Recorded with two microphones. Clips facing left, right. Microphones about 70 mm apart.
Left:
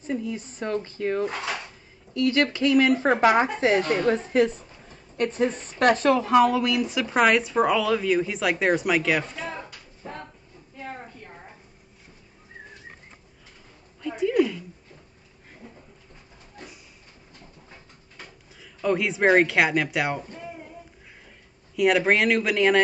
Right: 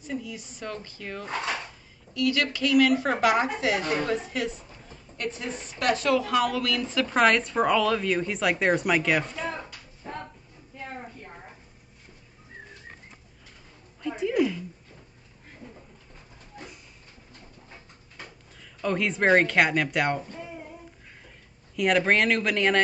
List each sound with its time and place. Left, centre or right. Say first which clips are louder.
0.0 s a woman's voice: left 5 dB; left; by 9.6 s centre
14.0 s a sound: left 3 dB; centre
18.1 s speech: even; centre
21.7 s speech: left 2 dB; centre